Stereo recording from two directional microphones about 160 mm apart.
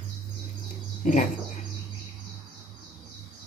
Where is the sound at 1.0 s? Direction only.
50° left (ahead or behind).